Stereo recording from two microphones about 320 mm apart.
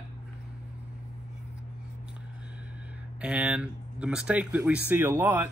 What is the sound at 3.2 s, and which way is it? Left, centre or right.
Speech, centre.